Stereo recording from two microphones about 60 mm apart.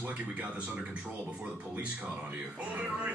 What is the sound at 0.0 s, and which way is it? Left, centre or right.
Speech, right.